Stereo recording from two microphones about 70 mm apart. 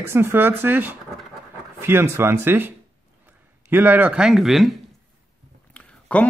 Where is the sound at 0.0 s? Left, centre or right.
Right.